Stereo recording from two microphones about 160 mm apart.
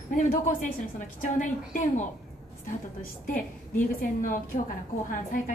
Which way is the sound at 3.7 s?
55° left (ahead or behind).